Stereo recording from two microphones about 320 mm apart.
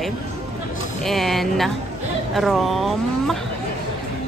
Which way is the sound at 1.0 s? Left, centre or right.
Centre.